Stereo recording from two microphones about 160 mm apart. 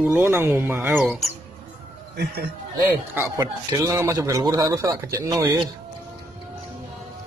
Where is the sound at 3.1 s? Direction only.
20° right (ahead or behind).